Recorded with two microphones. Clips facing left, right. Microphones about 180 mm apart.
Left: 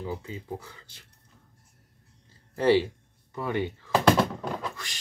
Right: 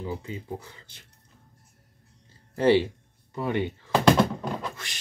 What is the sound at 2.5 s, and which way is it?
Speech, 20° right (ahead or behind).